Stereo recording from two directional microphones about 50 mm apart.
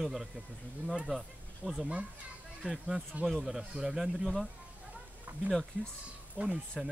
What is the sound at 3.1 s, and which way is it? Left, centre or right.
Speech, right.